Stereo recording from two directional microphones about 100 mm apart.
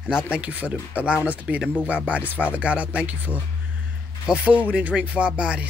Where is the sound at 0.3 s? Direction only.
15° right (ahead or behind).